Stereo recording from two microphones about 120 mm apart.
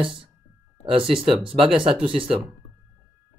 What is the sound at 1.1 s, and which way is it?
Speech, 5° right (ahead or behind).